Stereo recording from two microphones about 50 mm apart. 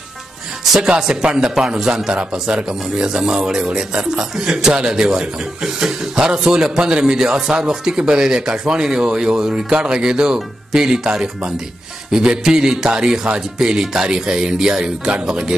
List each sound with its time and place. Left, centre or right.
0.7 s speech: centre